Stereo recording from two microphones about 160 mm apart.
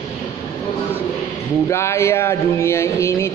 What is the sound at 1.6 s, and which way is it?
A man's voice, 15° left (ahead or behind).